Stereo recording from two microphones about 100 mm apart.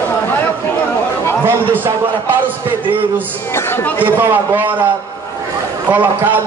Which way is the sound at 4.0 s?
20° right (ahead or behind).